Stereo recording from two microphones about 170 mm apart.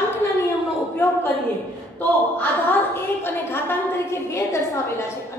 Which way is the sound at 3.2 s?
15° left (ahead or behind).